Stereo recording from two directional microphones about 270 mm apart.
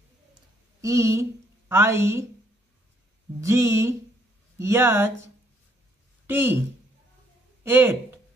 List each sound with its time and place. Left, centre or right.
0.7 s a woman's voice: centre
3.3 s a woman's voice: centre
7.6 s speech: centre